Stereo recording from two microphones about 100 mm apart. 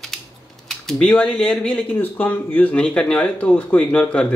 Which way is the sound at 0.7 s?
5° left (ahead or behind).